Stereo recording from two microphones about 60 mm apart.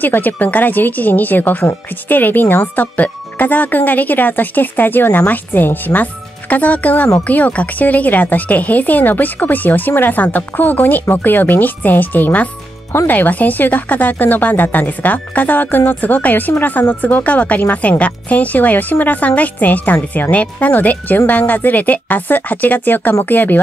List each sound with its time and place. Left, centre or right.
0.0 s a woman's voice: left